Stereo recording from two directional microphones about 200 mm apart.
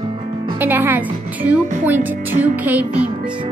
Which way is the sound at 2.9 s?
30° right (ahead or behind).